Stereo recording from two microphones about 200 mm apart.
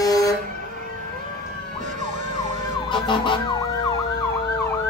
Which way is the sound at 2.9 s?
25° left (ahead or behind).